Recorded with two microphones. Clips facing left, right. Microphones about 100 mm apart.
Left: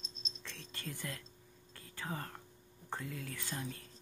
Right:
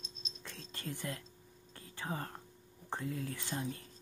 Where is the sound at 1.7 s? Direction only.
25° right (ahead or behind).